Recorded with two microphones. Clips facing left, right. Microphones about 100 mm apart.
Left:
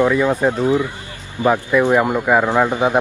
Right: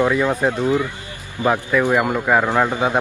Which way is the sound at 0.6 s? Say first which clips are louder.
Left 1 dB; 20° left (ahead or behind).